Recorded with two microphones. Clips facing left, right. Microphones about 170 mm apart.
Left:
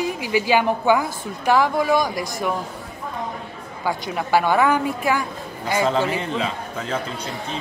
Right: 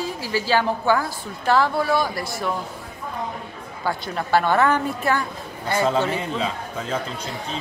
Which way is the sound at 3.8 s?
10° left (ahead or behind).